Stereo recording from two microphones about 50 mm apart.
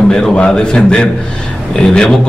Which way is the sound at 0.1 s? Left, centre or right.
Centre.